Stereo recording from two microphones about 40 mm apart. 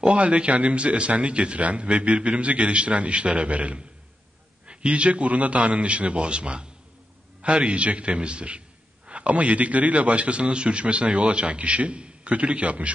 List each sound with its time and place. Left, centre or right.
0.0 s a man's voice: right